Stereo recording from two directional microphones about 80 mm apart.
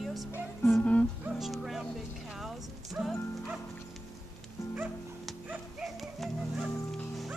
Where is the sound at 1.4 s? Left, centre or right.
Centre.